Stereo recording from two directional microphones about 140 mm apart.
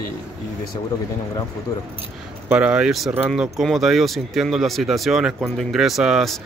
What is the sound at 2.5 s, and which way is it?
Speech, 5° right (ahead or behind).